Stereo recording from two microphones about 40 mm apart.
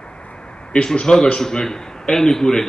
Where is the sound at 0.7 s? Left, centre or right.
Centre.